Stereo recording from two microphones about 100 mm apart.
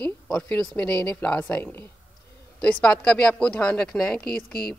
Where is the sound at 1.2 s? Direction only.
15° left (ahead or behind).